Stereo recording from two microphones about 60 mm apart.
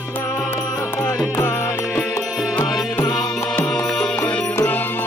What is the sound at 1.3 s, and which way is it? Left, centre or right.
Music, left.